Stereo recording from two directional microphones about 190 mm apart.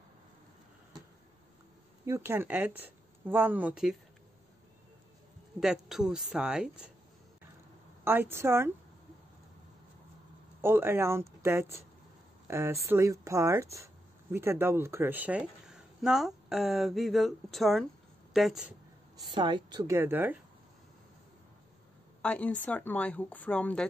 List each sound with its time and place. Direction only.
2.0 s speech: 15° right (ahead or behind)
5.6 s speech: centre (ahead or behind)
8.0 s speech: 10° right (ahead or behind)
10.6 s speech: 10° right (ahead or behind)
19.3 s a woman's voice: 25° right (ahead or behind)
22.2 s speech: 5° left (ahead or behind)